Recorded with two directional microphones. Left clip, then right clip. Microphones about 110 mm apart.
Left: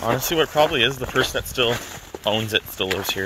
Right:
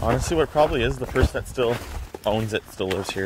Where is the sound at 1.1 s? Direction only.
35° right (ahead or behind).